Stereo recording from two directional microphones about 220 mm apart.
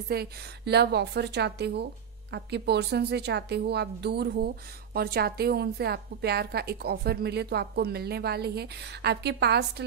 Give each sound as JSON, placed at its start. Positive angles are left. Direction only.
{"t": 0.1, "sound": "a woman's voice", "side_deg": -45}